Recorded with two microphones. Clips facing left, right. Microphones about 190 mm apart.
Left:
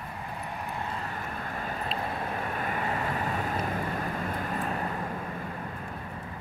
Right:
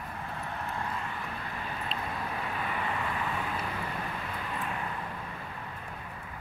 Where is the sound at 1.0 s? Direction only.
45° left (ahead or behind).